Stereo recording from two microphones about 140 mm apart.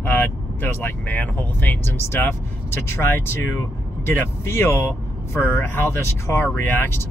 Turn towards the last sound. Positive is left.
turn(degrees=15)  # may be behind; listen again after turning